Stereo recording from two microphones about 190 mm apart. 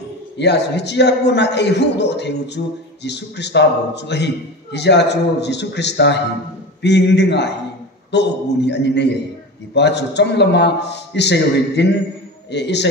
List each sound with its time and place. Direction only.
0.4 s a man's voice: 65° left (ahead or behind)